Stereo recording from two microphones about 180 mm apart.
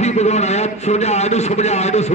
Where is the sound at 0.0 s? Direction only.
40° left (ahead or behind).